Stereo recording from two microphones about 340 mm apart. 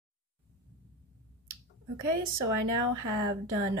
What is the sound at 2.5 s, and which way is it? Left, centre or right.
Speech, right.